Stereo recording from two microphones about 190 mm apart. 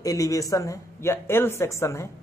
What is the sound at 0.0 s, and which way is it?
A man's voice, 15° left (ahead or behind).